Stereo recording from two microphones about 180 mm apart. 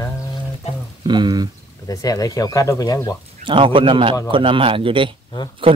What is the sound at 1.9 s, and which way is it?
Speech, 20° left (ahead or behind).